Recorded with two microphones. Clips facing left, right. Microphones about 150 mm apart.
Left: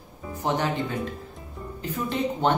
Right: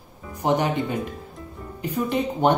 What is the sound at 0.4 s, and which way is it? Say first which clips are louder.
Speech: right 4 dB; 15° right (ahead or behind).